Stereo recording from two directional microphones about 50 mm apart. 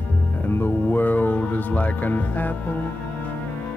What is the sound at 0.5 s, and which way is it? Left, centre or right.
Speech, left.